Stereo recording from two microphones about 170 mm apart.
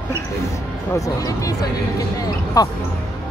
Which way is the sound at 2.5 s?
20° left (ahead or behind).